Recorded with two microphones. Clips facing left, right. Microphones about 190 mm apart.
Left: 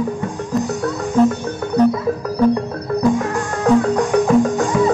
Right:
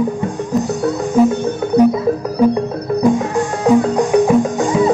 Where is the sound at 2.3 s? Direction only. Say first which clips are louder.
Even; 15° right (ahead or behind).